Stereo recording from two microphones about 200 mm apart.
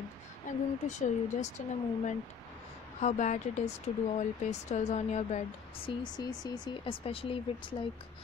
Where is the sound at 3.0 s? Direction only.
35° left (ahead or behind).